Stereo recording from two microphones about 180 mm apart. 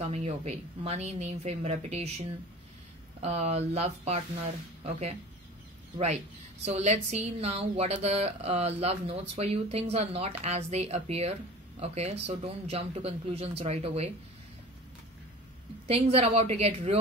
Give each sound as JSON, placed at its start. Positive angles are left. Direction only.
{"t": 0.1, "sound": "a woman's voice", "side_deg": -35}
{"t": 6.6, "sound": "a woman's voice", "side_deg": -40}
{"t": 15.9, "sound": "a woman's voice", "side_deg": -35}